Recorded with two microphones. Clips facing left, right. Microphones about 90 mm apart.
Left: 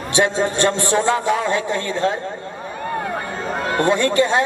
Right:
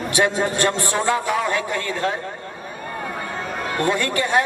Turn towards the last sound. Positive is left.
turn(degrees=20)  # may be behind; listen again after turning